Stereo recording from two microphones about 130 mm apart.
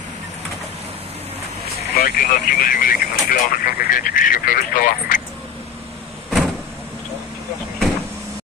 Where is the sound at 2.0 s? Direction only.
90° left.